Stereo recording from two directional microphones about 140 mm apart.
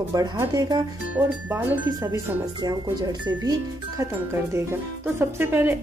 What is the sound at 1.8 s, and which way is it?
Speech, 25° right (ahead or behind).